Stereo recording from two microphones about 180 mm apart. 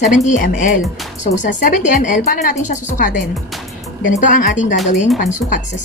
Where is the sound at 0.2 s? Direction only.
45° left (ahead or behind).